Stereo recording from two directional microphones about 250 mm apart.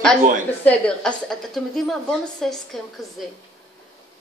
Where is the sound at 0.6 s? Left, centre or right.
Centre.